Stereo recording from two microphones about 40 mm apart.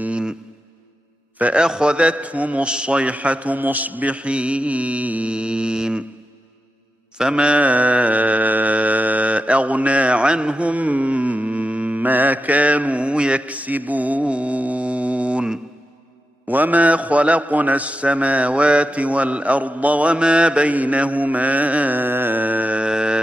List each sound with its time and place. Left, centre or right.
0.1 s a sound: right
1.6 s a man's voice: right
2.6 s a man's voice: right
5.3 s mantra: right
7.2 s mantra: right
12.0 s a man's voice: right
16.4 s a man's voice: right
20.7 s a man's voice: right
21.9 s music: right
22.8 s music: right